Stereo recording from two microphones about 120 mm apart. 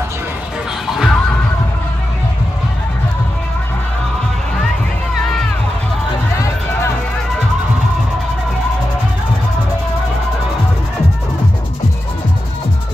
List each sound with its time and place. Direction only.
0.9 s music: centre (ahead or behind)
6.3 s music: 25° left (ahead or behind)